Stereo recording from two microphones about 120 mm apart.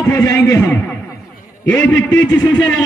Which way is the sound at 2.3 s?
15° left (ahead or behind).